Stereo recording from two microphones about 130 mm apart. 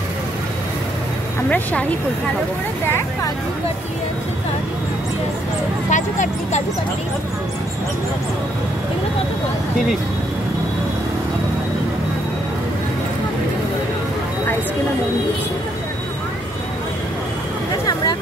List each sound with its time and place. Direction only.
1.5 s speech: 10° left (ahead or behind)
5.9 s speech: 70° left (ahead or behind)